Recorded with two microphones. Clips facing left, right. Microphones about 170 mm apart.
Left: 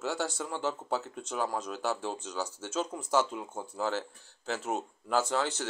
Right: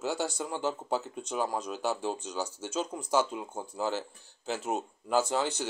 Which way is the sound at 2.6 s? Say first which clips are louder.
Even; centre (ahead or behind).